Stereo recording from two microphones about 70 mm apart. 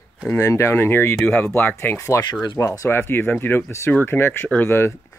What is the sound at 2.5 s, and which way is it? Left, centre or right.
Speech, left.